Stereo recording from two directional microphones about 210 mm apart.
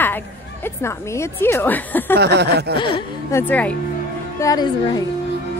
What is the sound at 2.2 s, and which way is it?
Speech, 50° right (ahead or behind).